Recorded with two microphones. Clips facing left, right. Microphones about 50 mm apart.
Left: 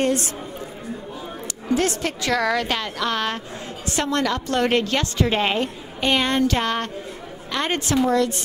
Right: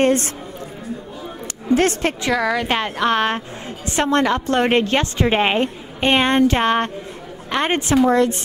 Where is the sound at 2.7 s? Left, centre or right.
Right.